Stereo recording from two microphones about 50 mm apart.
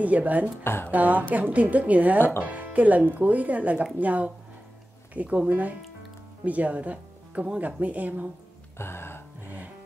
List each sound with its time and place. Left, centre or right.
0.0 s speech: right
8.7 s music: left